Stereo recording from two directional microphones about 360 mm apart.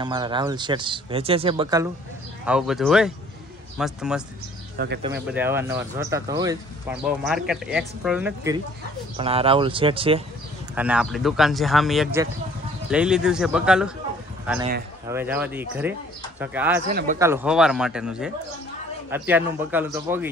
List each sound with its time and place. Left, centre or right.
0.0 s speech: centre
4.7 s speech: right
5.0 s speech: centre
9.1 s speech: centre
10.7 s speech: centre